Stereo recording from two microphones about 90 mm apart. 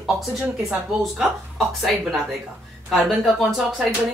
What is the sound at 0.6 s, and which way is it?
Speech, centre (ahead or behind).